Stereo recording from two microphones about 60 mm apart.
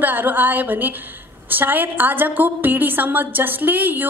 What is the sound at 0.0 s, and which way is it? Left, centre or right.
A woman's voice, right.